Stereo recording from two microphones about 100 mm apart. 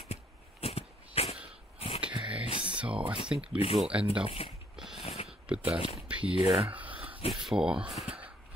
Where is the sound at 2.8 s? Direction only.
10° right (ahead or behind).